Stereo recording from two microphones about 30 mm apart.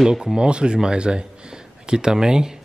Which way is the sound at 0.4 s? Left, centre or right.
Right.